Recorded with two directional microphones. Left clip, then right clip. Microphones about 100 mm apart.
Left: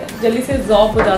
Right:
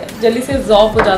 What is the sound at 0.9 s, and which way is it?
Speech, 15° right (ahead or behind).